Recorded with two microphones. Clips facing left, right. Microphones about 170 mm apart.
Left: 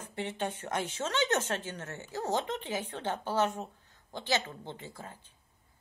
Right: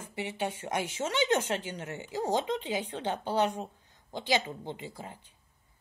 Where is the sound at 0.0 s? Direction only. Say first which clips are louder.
Right 1 dB; 10° right (ahead or behind).